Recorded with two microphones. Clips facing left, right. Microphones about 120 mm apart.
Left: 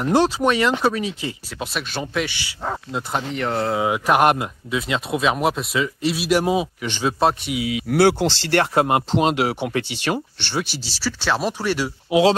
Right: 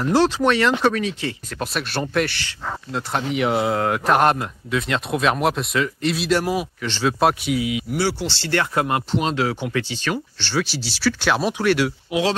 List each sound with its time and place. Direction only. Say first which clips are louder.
0.0 s speech: even; 15° left (ahead or behind)
1.6 s speech: right 2 dB; centre (ahead or behind)
3.3 s speech: right 5 dB; 10° right (ahead or behind)
3.7 s speech: even; 5° left (ahead or behind)
6.4 s speech: left 3 dB; 25° left (ahead or behind)
6.8 s speech: right 1 dB; 10° left (ahead or behind)
7.2 s speech: right 1 dB; centre (ahead or behind)
7.9 s speech: left 12 dB; 60° left (ahead or behind)
8.7 s speech: left 3 dB; 20° left (ahead or behind)
10.6 s speech: right 5 dB; 55° left (ahead or behind)
11.1 s speech: right 2 dB; centre (ahead or behind)
12.1 s speech: left 8 dB; 25° left (ahead or behind)